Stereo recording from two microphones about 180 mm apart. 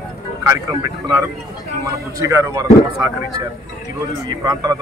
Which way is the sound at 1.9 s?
15° right (ahead or behind).